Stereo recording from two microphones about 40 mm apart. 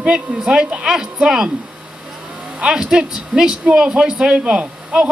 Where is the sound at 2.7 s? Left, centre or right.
Centre.